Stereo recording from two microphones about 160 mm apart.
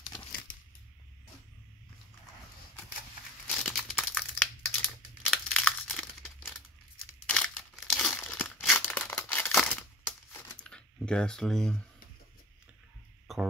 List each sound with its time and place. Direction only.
0.3 s a sound: 60° left (ahead or behind)
3.6 s crumpling: centre (ahead or behind)
4.4 s crumpling: 10° left (ahead or behind)
10.6 s typing: 5° left (ahead or behind)
13.3 s music: centre (ahead or behind)